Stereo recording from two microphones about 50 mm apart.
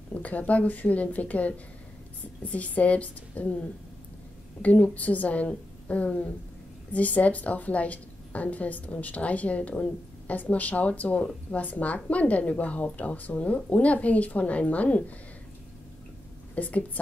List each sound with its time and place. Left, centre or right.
0.1 s a woman's voice: left
4.6 s a woman's voice: left
16.5 s speech: left